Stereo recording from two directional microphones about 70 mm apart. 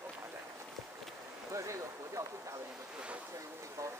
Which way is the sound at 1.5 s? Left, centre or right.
Right.